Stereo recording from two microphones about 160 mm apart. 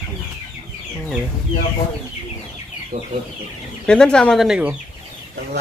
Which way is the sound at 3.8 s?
5° left (ahead or behind).